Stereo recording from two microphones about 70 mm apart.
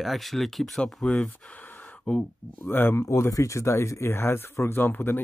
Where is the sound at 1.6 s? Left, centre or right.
Left.